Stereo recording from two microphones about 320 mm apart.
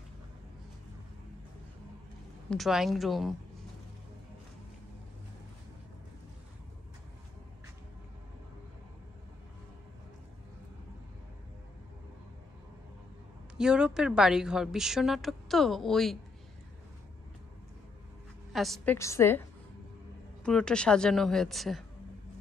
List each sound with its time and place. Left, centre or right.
2.5 s a woman's voice: centre
13.6 s a woman's voice: centre
18.5 s a woman's voice: centre
20.4 s a woman's voice: centre